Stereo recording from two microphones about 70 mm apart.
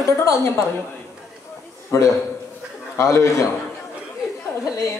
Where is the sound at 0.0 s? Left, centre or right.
Left.